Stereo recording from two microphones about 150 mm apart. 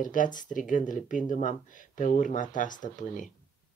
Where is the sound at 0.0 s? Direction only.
60° left (ahead or behind).